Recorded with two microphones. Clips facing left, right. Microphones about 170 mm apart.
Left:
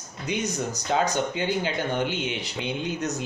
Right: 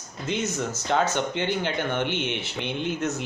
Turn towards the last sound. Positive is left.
turn(degrees=10)  # may be behind; listen again after turning